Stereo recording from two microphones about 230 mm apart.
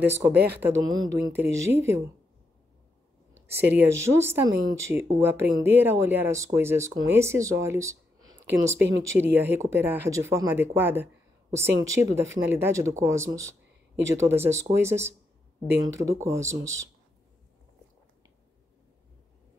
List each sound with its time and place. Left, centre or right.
0.0 s speech: centre
3.4 s speech: right
3.8 s speech: centre